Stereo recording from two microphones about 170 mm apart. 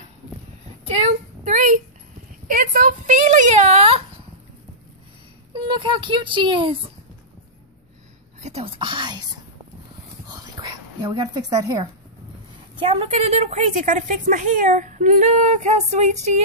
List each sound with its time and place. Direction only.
0.8 s a woman's voice: 40° right (ahead or behind)
5.5 s speech: 30° right (ahead or behind)
8.4 s speech: 40° right (ahead or behind)
10.6 s speech: 25° right (ahead or behind)
12.7 s a woman's voice: 35° right (ahead or behind)